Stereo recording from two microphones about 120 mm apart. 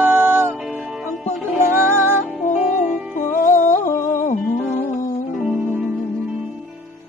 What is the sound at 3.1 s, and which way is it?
Music, 90° left.